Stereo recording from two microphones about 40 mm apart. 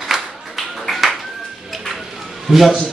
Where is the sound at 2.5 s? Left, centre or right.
Centre.